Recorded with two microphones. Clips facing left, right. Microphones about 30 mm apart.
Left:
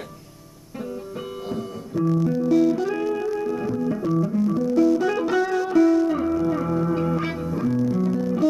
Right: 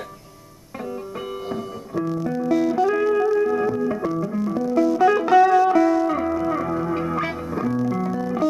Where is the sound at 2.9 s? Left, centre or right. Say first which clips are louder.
Right 6 dB; centre.